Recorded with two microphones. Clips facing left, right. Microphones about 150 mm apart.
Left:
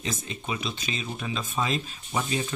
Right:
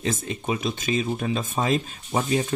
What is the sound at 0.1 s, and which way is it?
Speech, 45° right (ahead or behind).